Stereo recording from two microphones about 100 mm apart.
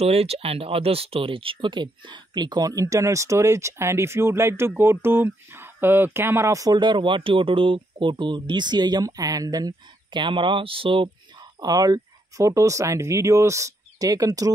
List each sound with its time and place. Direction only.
0.0 s speech: 85° right; by 11.1 s 60° right (ahead or behind)
11.6 s speech: 40° right (ahead or behind)